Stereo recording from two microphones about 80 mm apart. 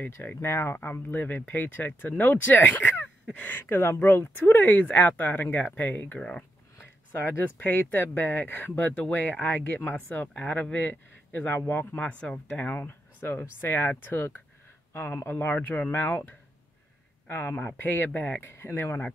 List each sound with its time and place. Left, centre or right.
0.0 s speech: left
6.1 s speech: centre
6.8 s speech: left
12.5 s speech: left
17.3 s speech: left